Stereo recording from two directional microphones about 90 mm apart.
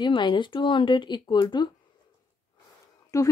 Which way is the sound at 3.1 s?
40° left (ahead or behind).